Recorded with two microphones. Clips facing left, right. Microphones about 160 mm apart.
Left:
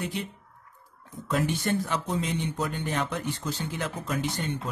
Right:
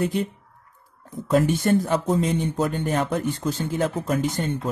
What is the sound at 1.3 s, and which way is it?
Speech, 45° right (ahead or behind).